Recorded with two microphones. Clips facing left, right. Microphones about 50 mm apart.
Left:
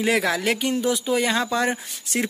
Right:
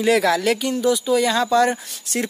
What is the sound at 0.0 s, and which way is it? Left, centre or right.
Speech, centre.